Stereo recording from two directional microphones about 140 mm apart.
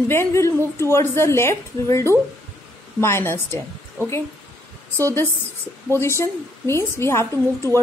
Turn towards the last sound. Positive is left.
turn(degrees=20)  # may be behind; listen again after turning